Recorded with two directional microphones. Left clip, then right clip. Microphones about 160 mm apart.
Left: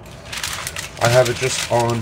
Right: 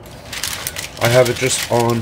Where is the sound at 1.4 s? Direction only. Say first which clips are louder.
Right 2 dB; 55° right (ahead or behind).